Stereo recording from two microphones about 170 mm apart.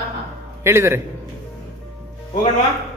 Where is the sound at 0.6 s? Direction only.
15° right (ahead or behind).